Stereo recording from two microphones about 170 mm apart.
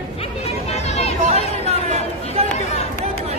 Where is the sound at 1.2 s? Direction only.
40° right (ahead or behind).